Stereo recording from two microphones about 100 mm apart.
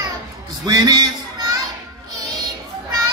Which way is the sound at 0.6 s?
40° right (ahead or behind).